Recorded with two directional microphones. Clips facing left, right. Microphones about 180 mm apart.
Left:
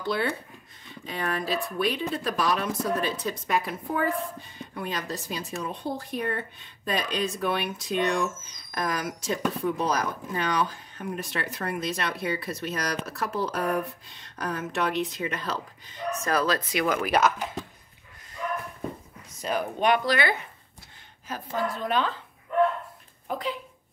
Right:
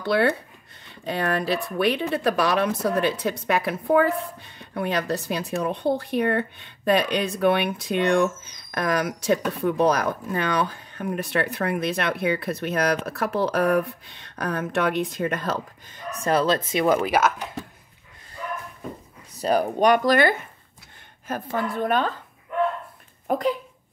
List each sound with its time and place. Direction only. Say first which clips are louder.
0.0 s speech: right 7 dB; 65° right (ahead or behind); by 16.0 s 50° right (ahead or behind)
16.2 s speech: right 5 dB; 30° right (ahead or behind)
17.1 s speech: right 1 dB; 5° right (ahead or behind)
19.3 s speech: right 7 dB; 35° right (ahead or behind)
23.2 s speech: right 8 dB; 45° right (ahead or behind)